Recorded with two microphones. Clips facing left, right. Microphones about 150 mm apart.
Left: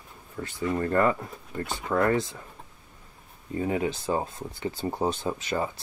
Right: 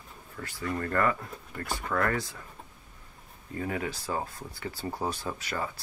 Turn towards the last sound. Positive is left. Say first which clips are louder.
# left 5 dB
turn(degrees=20)  # may be behind; listen again after turning